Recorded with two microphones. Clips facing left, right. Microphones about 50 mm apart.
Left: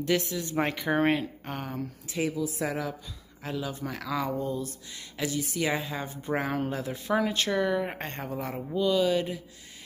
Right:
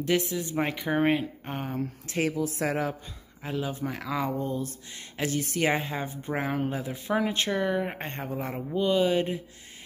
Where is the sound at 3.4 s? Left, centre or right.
Right.